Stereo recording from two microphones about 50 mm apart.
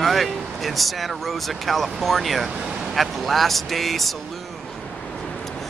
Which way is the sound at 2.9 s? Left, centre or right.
Centre.